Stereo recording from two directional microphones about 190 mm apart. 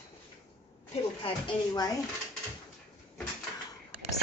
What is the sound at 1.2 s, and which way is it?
Speech, 25° left (ahead or behind).